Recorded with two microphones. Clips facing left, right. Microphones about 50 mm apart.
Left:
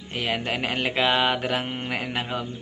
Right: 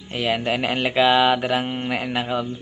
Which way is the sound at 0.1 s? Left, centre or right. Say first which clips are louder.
Right 5 dB; centre.